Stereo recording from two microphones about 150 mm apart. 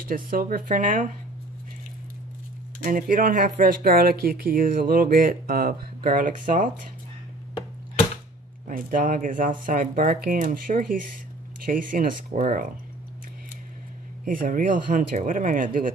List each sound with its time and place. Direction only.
0.0 s speech: 70° right (ahead or behind)
2.8 s speech: 65° right (ahead or behind)
8.6 s speech: 65° right (ahead or behind)
14.2 s speech: 65° right (ahead or behind)